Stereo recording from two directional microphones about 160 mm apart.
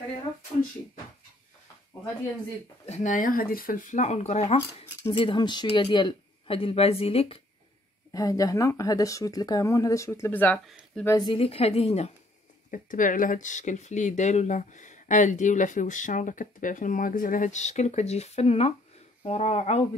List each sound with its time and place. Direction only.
2.8 s speech: 45° left (ahead or behind)
8.1 s speech: 20° left (ahead or behind)
11.1 s speech: 30° left (ahead or behind)
12.7 s speech: 55° left (ahead or behind)